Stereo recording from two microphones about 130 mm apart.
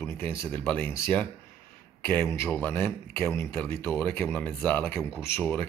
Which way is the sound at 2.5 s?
15° left (ahead or behind).